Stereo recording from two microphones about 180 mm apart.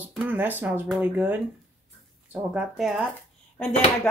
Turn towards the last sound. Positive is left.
turn(degrees=10)  # may be behind; listen again after turning